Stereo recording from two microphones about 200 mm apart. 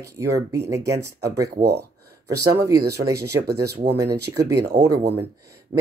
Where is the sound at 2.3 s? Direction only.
15° right (ahead or behind).